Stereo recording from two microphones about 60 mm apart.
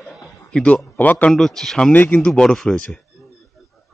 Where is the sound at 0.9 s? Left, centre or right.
Left.